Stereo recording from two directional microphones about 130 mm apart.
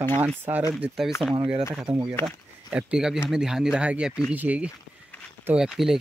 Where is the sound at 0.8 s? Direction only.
5° right (ahead or behind).